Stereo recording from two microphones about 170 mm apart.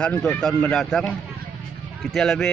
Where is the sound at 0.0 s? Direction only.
10° left (ahead or behind).